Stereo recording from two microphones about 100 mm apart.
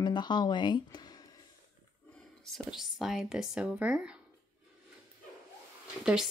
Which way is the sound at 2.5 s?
5° right (ahead or behind).